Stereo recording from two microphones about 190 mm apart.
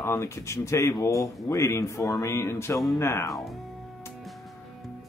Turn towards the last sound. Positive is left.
turn(degrees=0)  # may be behind; listen again after turning